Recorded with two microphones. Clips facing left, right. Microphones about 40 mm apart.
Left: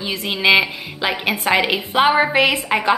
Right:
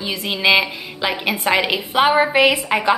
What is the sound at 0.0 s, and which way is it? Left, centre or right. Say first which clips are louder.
A woman's voice: even; centre.